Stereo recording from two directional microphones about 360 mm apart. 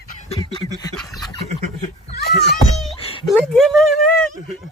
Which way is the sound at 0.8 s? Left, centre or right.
Centre.